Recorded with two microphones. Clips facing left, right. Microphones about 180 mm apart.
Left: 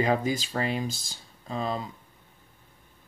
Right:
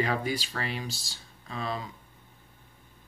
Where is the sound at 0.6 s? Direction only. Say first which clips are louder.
Left 6 dB; 25° left (ahead or behind).